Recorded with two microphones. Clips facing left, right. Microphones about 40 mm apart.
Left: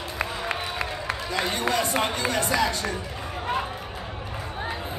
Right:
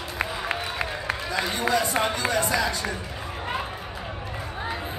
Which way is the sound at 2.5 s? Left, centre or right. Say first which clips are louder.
Left 1 dB; centre.